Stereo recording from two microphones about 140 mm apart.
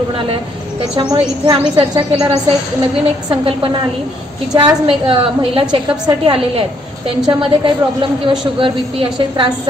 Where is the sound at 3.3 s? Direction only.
40° right (ahead or behind).